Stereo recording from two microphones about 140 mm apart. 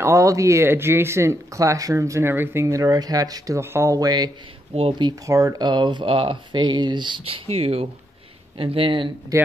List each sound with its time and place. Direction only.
0.0 s speech: 20° right (ahead or behind)
4.7 s speech: 40° right (ahead or behind)
9.3 s speech: 20° right (ahead or behind)